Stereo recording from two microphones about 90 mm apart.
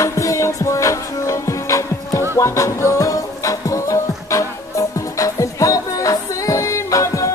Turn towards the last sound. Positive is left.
turn(degrees=35)  # may be behind; listen again after turning